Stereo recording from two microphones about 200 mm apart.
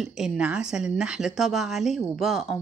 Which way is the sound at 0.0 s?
5° right (ahead or behind).